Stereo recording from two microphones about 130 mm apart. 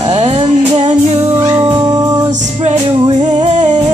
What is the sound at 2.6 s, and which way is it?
Music, 60° right (ahead or behind).